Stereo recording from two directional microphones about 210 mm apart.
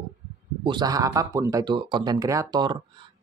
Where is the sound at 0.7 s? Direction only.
20° right (ahead or behind).